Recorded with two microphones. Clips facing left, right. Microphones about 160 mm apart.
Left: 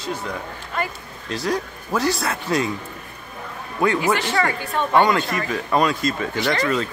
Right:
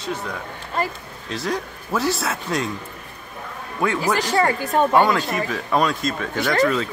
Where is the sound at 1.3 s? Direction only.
Centre (ahead or behind).